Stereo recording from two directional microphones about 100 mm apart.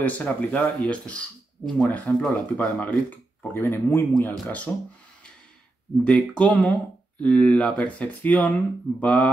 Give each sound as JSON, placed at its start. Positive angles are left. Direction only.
{"t": 0.0, "sound": "speech", "side_deg": 15}
{"t": 6.0, "sound": "speech", "side_deg": 10}